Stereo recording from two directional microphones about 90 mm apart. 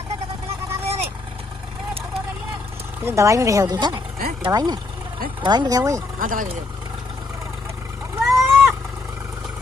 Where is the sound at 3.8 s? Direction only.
60° right (ahead or behind).